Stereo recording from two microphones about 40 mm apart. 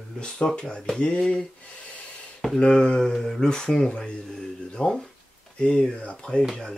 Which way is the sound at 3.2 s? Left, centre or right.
Centre.